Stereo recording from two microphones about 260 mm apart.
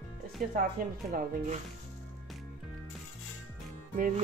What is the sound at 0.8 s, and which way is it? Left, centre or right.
Speech, right.